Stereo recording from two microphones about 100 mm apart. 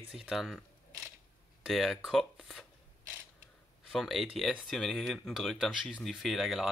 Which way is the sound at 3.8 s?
5° left (ahead or behind).